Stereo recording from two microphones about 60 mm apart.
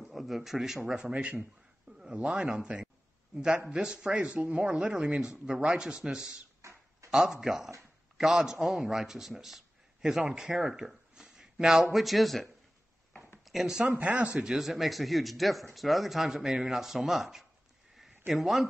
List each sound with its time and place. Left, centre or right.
0.0 s speech: centre
13.5 s speech: centre
13.8 s speech: right
14.4 s speech: centre